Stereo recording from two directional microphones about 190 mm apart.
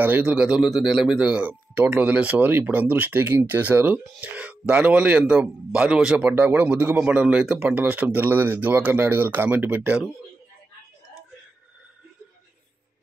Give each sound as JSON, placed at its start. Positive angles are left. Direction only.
{"t": 0.0, "sound": "speech", "side_deg": -10}